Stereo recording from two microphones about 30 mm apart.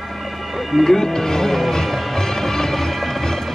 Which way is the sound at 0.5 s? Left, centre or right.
Centre.